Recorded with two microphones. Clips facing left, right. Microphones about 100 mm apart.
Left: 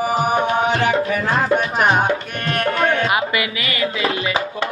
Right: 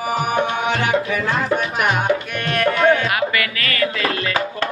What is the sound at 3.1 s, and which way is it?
Music, 20° left (ahead or behind).